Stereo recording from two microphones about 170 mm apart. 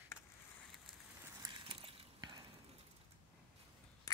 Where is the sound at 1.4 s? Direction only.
30° right (ahead or behind).